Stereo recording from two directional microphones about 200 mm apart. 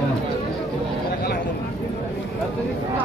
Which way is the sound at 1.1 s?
45° left (ahead or behind).